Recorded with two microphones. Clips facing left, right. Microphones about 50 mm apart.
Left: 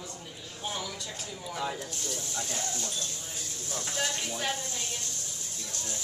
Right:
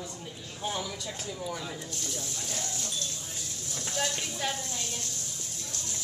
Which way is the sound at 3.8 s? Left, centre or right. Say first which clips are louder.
Right 1 dB; centre.